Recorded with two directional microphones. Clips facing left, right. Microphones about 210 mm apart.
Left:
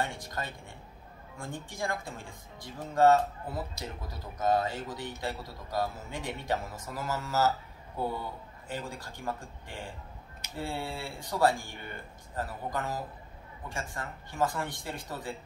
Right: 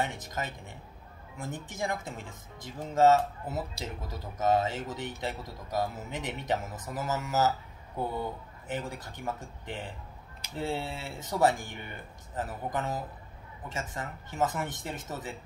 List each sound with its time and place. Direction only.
0.0 s speech: 20° right (ahead or behind)